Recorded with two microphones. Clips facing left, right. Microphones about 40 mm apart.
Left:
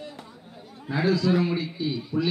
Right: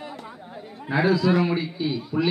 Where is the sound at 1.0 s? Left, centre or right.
Centre.